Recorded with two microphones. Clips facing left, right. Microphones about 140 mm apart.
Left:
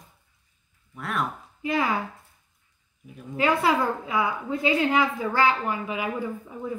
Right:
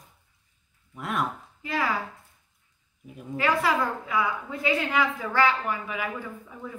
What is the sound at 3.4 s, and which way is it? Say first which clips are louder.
A woman's voice: left 2 dB; 20° left (ahead or behind).